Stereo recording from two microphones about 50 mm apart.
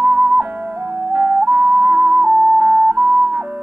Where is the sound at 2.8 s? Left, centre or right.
Right.